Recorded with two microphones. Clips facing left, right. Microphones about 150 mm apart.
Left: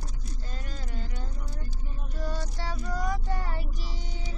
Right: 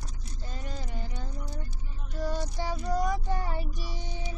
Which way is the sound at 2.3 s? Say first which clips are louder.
Right 3 dB; 15° right (ahead or behind).